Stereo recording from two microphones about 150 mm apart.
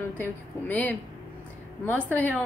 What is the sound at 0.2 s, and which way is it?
A woman's voice, 10° left (ahead or behind).